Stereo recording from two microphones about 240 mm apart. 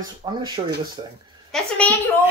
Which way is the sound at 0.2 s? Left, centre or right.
Centre.